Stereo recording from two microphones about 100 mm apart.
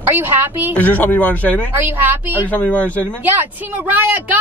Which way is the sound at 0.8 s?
15° left (ahead or behind).